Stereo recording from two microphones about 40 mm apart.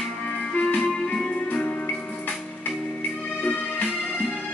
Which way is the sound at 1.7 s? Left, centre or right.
Left.